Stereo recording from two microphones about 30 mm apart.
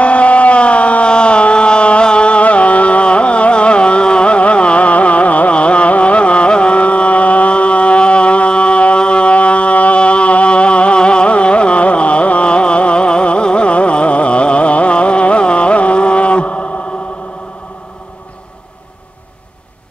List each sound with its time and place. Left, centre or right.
0.0 s a sound: left
1.0 s music: left
5.5 s carnatic music: left
9.9 s music: left